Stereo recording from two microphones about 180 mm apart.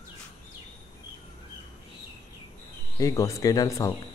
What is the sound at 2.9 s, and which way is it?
Speech, 20° left (ahead or behind).